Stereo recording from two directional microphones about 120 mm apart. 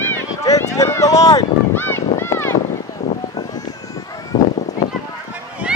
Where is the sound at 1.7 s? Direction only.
20° left (ahead or behind).